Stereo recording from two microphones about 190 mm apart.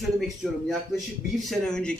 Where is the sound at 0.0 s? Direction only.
Centre (ahead or behind).